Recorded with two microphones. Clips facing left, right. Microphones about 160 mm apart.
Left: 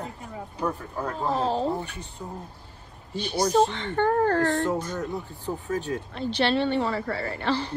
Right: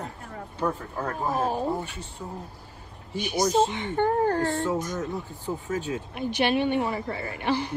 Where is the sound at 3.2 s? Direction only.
10° right (ahead or behind).